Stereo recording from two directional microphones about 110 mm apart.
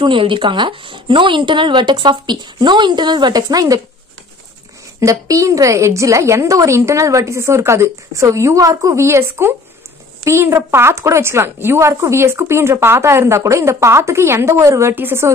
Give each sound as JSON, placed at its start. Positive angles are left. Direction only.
{"t": 0.0, "sound": "a woman's voice", "side_deg": -50}
{"t": 5.0, "sound": "a woman's voice", "side_deg": -30}